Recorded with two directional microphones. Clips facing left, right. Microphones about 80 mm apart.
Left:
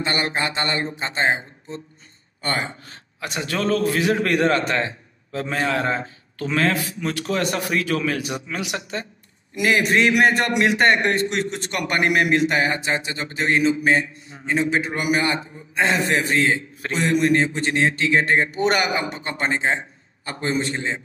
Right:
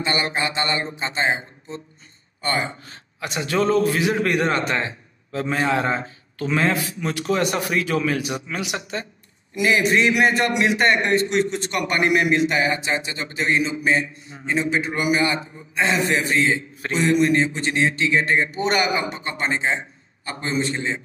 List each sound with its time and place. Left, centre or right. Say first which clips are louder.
0.0 s a man's voice: even; left
3.2 s a man's voice: right 3 dB; right
9.6 s a man's voice: even; left